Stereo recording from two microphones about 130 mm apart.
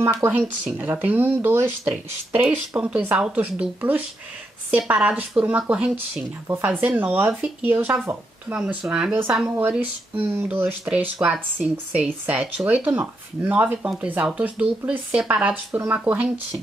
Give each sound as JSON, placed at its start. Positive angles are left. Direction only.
{"t": 0.0, "sound": "speech", "side_deg": -25}
{"t": 0.3, "sound": "speech", "side_deg": -5}
{"t": 0.7, "sound": "speech", "side_deg": -15}
{"t": 6.4, "sound": "speech", "side_deg": -15}